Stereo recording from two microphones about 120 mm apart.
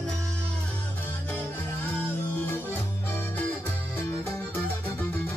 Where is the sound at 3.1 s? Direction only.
15° left (ahead or behind).